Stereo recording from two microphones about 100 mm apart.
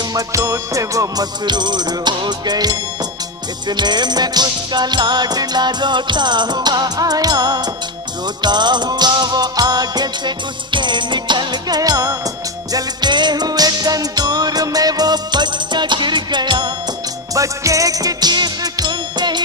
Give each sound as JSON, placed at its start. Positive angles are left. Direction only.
{"t": 0.1, "sound": "music", "side_deg": -35}
{"t": 12.7, "sound": "music", "side_deg": -50}
{"t": 17.3, "sound": "music", "side_deg": -35}